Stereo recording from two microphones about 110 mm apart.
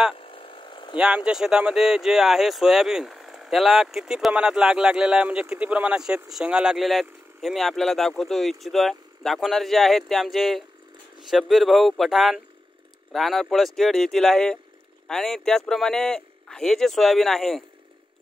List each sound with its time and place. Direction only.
0.2 s pump: 55° left (ahead or behind)
0.9 s speech: 10° right (ahead or behind)